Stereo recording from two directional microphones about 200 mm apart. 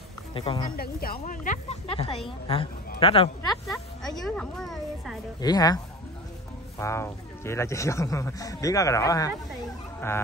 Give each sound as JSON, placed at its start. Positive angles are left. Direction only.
{"t": 0.3, "sound": "speech", "side_deg": 25}
{"t": 0.7, "sound": "speech", "side_deg": 50}
{"t": 4.4, "sound": "speech", "side_deg": 0}
{"t": 5.4, "sound": "speech", "side_deg": 20}
{"t": 6.8, "sound": "speech", "side_deg": 15}
{"t": 9.9, "sound": "fowl", "side_deg": 10}